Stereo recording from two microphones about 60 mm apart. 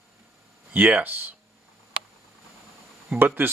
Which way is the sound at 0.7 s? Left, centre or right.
Right.